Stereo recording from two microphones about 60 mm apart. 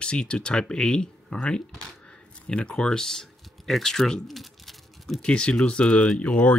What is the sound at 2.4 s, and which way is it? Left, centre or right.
Speech, centre.